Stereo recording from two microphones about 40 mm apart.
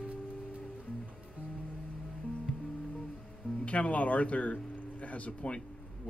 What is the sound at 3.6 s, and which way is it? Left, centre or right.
Speech, left.